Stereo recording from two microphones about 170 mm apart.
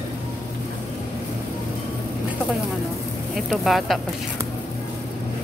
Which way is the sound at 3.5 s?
Centre (ahead or behind).